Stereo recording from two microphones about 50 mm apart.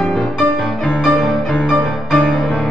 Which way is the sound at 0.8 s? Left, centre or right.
Left.